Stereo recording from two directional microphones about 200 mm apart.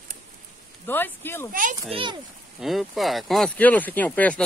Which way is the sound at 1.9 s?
25° right (ahead or behind).